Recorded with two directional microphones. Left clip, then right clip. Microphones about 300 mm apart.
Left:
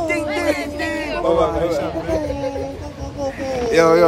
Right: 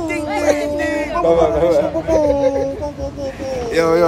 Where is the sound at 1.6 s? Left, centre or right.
Right.